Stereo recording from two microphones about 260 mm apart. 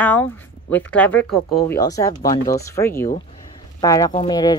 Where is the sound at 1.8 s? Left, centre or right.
Centre.